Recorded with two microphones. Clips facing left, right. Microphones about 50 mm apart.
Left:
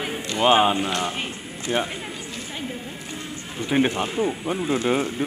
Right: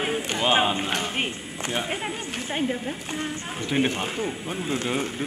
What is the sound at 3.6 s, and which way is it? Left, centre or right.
Speech, centre.